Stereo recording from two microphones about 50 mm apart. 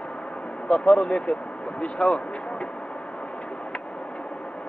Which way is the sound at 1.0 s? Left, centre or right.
Left.